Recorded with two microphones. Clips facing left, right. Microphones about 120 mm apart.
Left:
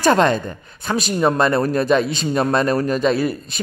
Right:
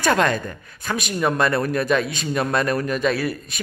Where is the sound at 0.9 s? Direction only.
30° left (ahead or behind).